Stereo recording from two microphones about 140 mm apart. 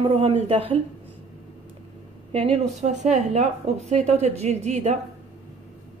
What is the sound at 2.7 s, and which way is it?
A woman's voice, 55° right (ahead or behind).